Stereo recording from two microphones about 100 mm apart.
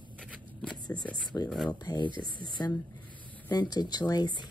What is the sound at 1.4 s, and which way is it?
Speech, 40° left (ahead or behind).